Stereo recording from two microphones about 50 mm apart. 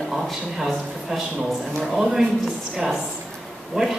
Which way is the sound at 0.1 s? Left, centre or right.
Centre.